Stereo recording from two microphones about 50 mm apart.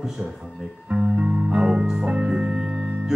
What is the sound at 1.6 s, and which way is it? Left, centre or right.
Music, centre.